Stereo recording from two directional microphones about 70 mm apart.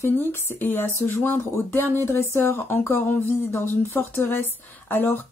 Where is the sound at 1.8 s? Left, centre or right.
Right.